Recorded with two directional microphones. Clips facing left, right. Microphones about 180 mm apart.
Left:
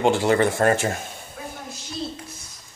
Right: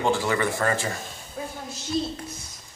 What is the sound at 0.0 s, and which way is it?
Speech, 25° left (ahead or behind).